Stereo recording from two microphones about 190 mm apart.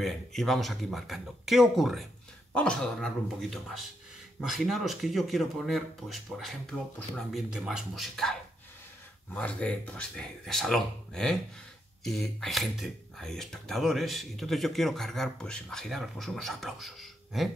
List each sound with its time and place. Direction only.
0.0 s speech: centre (ahead or behind)